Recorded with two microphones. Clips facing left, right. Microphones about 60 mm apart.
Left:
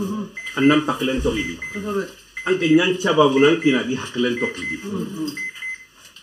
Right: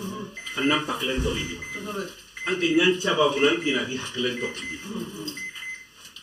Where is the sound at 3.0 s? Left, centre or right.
Left.